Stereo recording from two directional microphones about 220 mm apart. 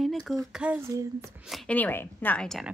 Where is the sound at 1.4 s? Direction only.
Centre (ahead or behind).